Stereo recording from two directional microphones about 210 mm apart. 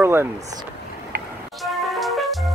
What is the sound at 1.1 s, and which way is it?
Music, 45° right (ahead or behind).